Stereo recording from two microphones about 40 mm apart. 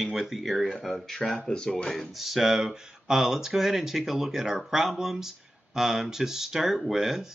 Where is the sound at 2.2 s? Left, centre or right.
Centre.